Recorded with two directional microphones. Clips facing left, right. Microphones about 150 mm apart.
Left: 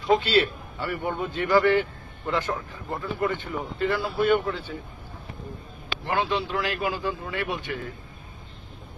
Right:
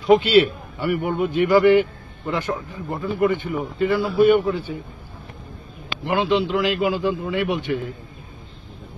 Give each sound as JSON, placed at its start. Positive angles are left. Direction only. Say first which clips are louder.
{"t": 0.0, "sound": "a man's voice", "louder": "right 7 dB", "side_deg": -15}
{"t": 6.0, "sound": "a man's voice", "louder": "right 6 dB", "side_deg": -20}